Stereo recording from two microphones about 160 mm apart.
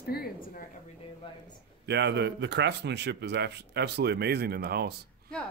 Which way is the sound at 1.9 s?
90° right.